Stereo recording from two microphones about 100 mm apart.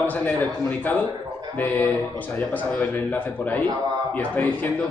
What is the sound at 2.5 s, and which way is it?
A man's voice, 15° left (ahead or behind).